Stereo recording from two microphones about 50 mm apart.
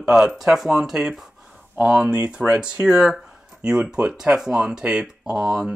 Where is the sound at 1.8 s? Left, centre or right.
Centre.